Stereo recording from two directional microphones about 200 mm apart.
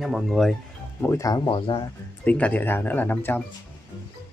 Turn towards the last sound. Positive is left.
turn(degrees=10)  # may be behind; listen again after turning